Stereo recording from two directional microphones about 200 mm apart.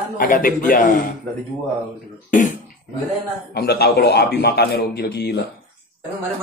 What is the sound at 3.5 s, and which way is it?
A man's voice, 55° left (ahead or behind).